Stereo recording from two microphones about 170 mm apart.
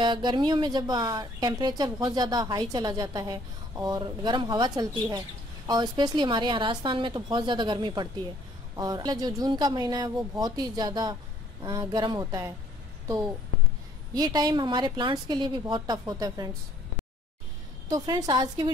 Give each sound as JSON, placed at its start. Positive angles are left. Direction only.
{"t": 0.0, "sound": "a woman's voice", "side_deg": -25}
{"t": 14.1, "sound": "a woman's voice", "side_deg": -20}
{"t": 17.8, "sound": "a woman's voice", "side_deg": -25}